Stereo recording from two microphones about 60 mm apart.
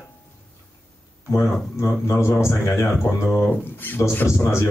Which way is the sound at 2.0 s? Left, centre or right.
Left.